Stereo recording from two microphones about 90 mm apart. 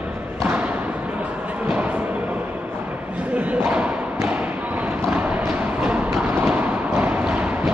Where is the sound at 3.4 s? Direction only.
15° right (ahead or behind).